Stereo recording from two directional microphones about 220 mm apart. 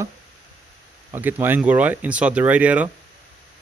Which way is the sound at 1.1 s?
10° right (ahead or behind).